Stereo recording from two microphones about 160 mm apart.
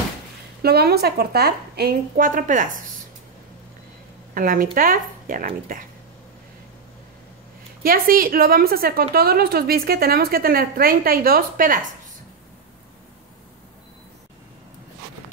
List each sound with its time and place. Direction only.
0.6 s a woman's voice: 80° right; by 2.8 s 55° right (ahead or behind)
4.3 s a woman's voice: 60° right (ahead or behind)
7.8 s a woman's voice: 65° right (ahead or behind)